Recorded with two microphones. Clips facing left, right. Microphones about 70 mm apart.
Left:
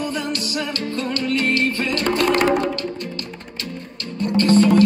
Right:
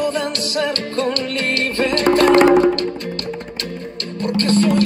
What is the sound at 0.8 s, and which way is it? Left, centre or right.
Music, right.